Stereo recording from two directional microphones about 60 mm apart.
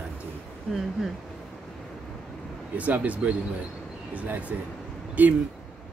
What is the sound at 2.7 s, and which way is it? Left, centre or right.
A man's voice, right.